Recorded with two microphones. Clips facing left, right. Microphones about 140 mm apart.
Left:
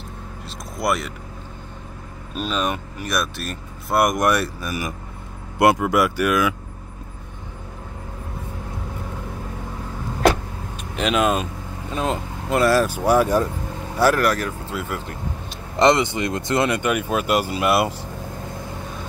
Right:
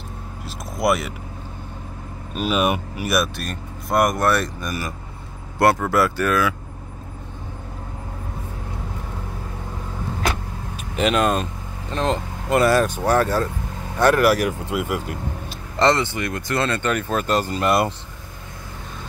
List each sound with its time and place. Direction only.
0.7 s speech: centre (ahead or behind)
2.3 s speech: 10° right (ahead or behind); by 6.5 s 15° left (ahead or behind)
11.0 s speech: centre (ahead or behind)
14.3 s speech: 10° right (ahead or behind)
15.7 s speech: 15° left (ahead or behind)